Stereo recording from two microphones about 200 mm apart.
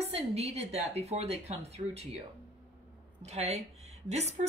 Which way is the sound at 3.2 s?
35° right (ahead or behind).